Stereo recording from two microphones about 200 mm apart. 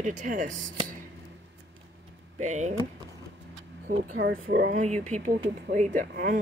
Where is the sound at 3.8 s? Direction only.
40° right (ahead or behind).